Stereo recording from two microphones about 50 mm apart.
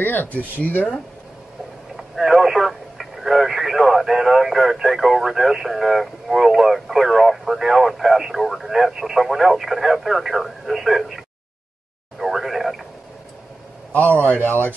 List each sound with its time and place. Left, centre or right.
0.0 s a man's voice: left
2.0 s speech: centre
12.2 s a sound: centre
13.9 s a man's voice: left